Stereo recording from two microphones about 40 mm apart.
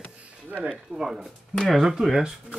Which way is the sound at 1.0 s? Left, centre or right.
Right.